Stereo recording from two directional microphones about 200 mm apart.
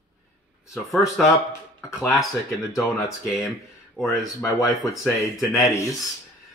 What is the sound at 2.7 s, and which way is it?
Speech, 15° left (ahead or behind).